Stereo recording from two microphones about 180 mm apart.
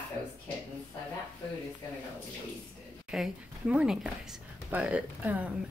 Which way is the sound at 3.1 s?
5° right (ahead or behind).